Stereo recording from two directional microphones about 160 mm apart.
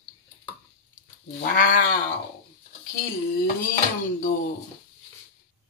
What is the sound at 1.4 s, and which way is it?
Speech, 60° left (ahead or behind).